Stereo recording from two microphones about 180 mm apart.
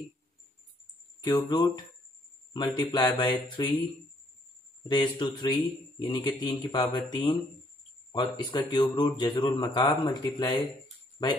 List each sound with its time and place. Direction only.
1.2 s speech: 20° left (ahead or behind)
4.8 s speech: 25° left (ahead or behind)